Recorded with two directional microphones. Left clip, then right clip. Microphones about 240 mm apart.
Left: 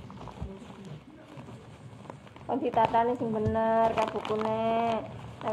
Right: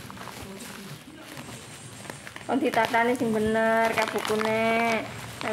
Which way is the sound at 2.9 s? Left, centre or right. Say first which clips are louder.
Right 3 dB; right.